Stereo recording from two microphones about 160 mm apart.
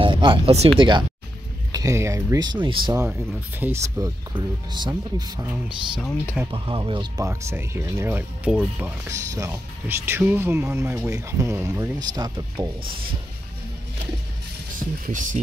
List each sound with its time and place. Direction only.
0.0 s speech: 30° right (ahead or behind)
1.7 s speech: 20° right (ahead or behind)
2.9 s speech: 15° right (ahead or behind)
4.3 s speech: 30° right (ahead or behind)
6.5 s speech: 35° right (ahead or behind); by 12.0 s 10° right (ahead or behind)
12.2 s speech: 30° right (ahead or behind)
15.0 s speech: 55° right (ahead or behind)